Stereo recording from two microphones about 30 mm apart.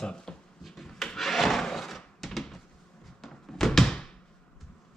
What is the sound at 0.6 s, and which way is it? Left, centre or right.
Rub, centre.